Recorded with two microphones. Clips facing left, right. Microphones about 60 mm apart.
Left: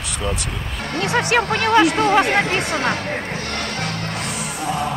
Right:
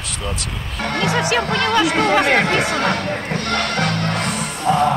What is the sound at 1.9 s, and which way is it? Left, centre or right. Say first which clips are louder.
Speech: right 1 dB; right.